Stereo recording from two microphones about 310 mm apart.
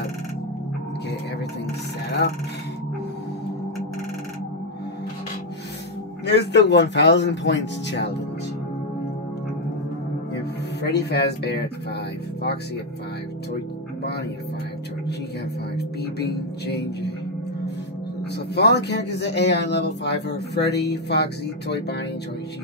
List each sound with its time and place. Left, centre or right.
6.2 s speech: left
10.3 s music: left
15.7 s speech: left
18.3 s speech: left